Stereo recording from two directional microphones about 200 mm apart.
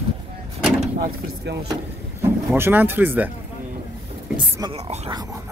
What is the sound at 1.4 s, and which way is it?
Speech, 60° right (ahead or behind).